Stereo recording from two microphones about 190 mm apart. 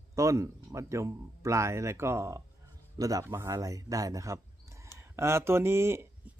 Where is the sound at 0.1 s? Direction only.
15° right (ahead or behind).